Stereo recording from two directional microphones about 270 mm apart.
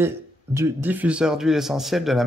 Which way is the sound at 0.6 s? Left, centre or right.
Centre.